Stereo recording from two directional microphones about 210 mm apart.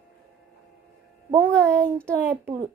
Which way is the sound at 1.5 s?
5° left (ahead or behind).